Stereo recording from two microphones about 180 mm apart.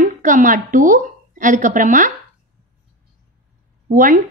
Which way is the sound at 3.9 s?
50° right (ahead or behind).